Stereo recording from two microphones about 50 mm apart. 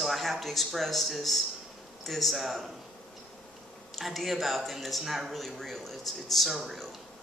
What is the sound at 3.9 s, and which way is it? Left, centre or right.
Speech, centre.